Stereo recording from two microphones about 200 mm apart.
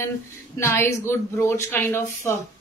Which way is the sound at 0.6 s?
10° left (ahead or behind).